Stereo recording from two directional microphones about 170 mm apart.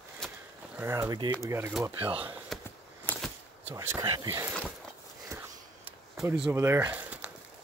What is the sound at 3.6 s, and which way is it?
Speech, 15° right (ahead or behind).